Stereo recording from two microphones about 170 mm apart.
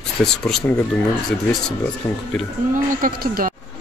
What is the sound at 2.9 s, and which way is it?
Speech, 55° right (ahead or behind).